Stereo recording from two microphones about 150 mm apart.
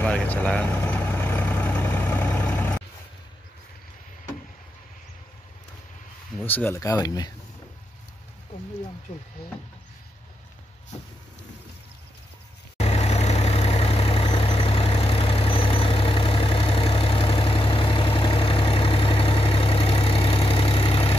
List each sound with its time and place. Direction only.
0.0 s vehicle: 10° left (ahead or behind)
6.4 s speech: 10° left (ahead or behind)
9.4 s speech: 90° left
12.7 s vehicle: 45° left (ahead or behind)